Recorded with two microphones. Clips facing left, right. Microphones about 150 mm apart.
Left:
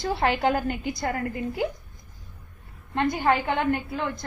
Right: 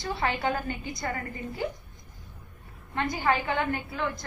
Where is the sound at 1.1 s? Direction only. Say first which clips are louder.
Left 6 dB; 60° left (ahead or behind).